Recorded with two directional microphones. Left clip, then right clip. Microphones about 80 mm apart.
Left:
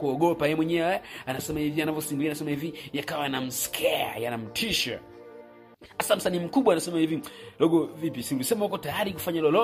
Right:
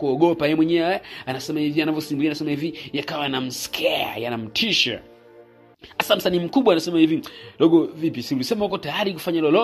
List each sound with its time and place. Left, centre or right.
0.0 s speech: centre
0.7 s speech: right
5.9 s speech: right
8.0 s speech: centre